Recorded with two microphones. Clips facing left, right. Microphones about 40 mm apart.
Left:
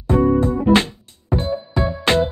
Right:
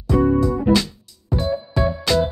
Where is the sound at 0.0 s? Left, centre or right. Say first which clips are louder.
Left 1 dB; left.